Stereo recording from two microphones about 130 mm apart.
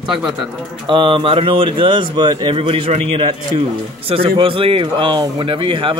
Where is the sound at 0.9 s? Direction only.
40° right (ahead or behind).